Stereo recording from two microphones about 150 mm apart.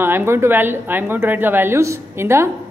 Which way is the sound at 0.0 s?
15° right (ahead or behind).